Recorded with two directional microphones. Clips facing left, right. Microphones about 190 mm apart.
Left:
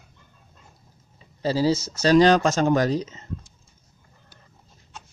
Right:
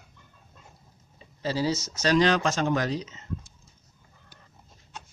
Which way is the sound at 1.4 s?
35° left (ahead or behind).